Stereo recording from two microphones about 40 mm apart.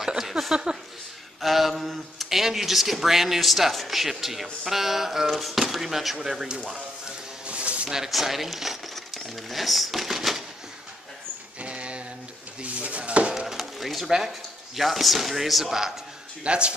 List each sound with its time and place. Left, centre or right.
0.2 s a sound: centre
1.4 s speech: centre
7.4 s a sound: right
8.1 s speech: centre
11.6 s a sound: right
12.6 s dishes: right
13.5 s pigeon: centre
14.8 s speech: centre
16.4 s speech: right